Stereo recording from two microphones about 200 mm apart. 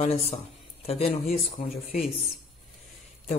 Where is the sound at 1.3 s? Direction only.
45° left (ahead or behind).